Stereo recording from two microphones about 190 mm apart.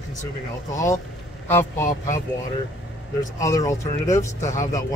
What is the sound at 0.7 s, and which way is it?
Speech, 15° left (ahead or behind).